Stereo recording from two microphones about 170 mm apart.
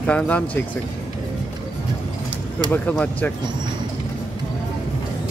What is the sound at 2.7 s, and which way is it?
Speech, 10° left (ahead or behind).